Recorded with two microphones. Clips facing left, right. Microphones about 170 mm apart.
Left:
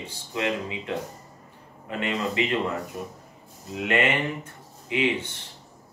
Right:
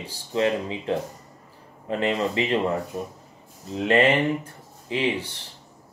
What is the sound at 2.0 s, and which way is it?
Speech, 30° right (ahead or behind).